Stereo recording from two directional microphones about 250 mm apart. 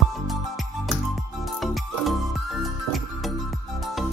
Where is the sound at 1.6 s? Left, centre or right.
Centre.